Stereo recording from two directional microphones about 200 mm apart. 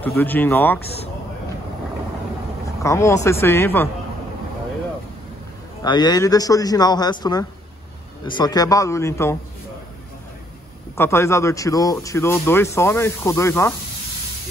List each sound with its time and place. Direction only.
0.0 s speech: 10° left (ahead or behind)
2.8 s speech: 15° left (ahead or behind)
5.9 s speech: 20° left (ahead or behind)
11.0 s speech: 15° left (ahead or behind)